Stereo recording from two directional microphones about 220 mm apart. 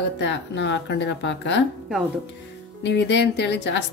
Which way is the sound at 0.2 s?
55° left (ahead or behind).